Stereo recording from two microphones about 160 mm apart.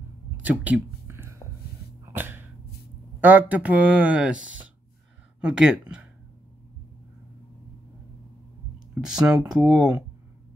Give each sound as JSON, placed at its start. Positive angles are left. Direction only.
{"t": 0.4, "sound": "a sound", "side_deg": -10}
{"t": 3.2, "sound": "speech", "side_deg": -10}
{"t": 9.0, "sound": "speech", "side_deg": -5}